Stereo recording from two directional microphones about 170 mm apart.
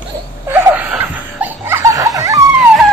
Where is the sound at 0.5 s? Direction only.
10° right (ahead or behind).